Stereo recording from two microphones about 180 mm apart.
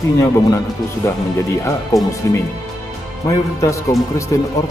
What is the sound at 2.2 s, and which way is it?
A man's voice, 15° left (ahead or behind).